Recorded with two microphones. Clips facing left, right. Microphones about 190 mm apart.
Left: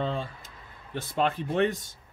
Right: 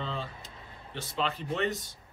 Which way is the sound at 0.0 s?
50° left (ahead or behind).